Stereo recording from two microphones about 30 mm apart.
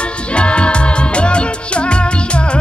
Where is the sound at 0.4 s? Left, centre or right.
Left.